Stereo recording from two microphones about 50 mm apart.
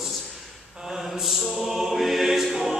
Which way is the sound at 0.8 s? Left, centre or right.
Centre.